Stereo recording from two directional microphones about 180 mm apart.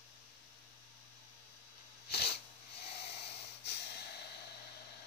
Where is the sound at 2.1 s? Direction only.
65° left (ahead or behind).